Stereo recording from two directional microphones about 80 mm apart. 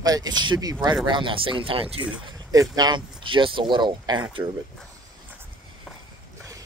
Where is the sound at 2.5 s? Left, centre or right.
Right.